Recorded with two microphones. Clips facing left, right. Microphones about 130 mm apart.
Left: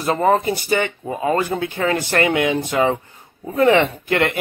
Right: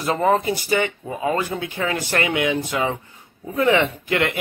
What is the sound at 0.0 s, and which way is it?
Speech, 35° left (ahead or behind).